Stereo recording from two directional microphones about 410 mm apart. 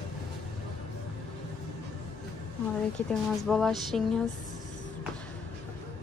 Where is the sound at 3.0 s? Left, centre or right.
Centre.